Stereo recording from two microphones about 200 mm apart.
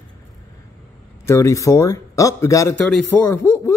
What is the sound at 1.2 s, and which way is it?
A man's voice, 15° left (ahead or behind).